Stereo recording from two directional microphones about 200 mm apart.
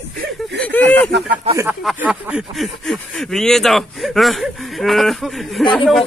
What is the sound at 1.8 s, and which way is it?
Speech, 5° right (ahead or behind).